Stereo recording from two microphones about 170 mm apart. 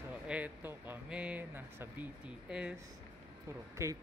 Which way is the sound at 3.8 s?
15° right (ahead or behind).